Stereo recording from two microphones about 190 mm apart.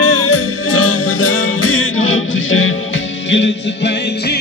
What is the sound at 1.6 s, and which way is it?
Music, 90° left.